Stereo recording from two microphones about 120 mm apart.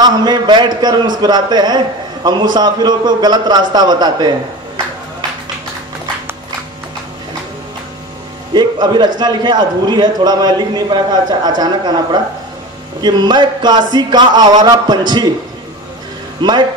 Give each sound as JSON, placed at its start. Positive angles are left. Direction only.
{"t": 0.0, "sound": "a man's voice", "side_deg": -35}
{"t": 8.5, "sound": "a man's voice", "side_deg": -35}
{"t": 16.3, "sound": "speech", "side_deg": -40}